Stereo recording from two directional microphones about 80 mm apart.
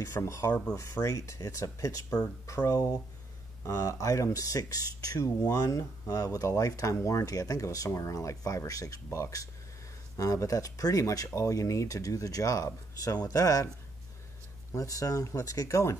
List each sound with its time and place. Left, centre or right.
0.0 s speech: left
14.7 s speech: left